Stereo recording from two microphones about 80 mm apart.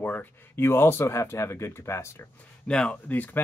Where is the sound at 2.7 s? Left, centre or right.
Centre.